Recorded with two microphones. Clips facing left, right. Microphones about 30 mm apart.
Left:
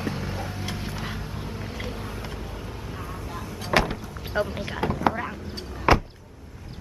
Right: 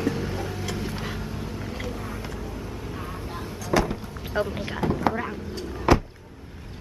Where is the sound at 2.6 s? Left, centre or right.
Centre.